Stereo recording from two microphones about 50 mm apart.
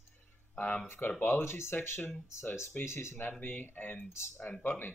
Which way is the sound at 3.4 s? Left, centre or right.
Left.